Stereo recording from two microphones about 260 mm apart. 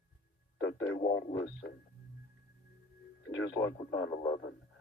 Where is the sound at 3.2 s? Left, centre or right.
Left.